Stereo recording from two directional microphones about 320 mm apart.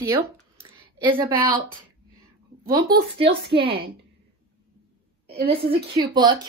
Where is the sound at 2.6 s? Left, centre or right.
Centre.